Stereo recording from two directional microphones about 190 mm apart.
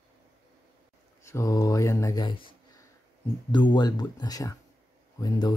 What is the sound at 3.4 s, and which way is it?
Speech, 25° left (ahead or behind).